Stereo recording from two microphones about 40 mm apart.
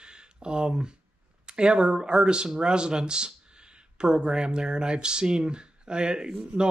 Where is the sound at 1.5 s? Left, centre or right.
Right.